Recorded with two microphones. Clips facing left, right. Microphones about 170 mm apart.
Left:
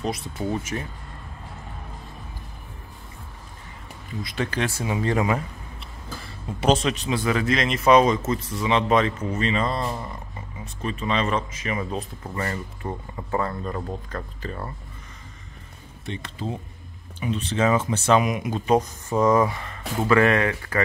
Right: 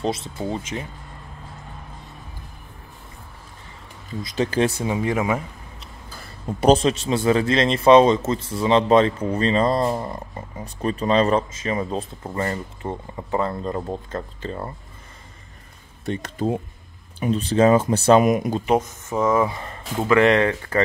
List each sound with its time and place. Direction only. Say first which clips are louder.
0.0 s speech: right 2 dB; 25° right (ahead or behind)
4.4 s speech: right 6 dB; 30° right (ahead or behind)
4.6 s speech: right 3 dB; 20° right (ahead or behind)
6.6 s speech: right 5 dB; 35° right (ahead or behind)
16.1 s speech: right 7 dB; 45° right (ahead or behind)
19.1 s speech: left 1 dB; 10° right (ahead or behind)
19.4 s speech: right 1 dB; 30° right (ahead or behind)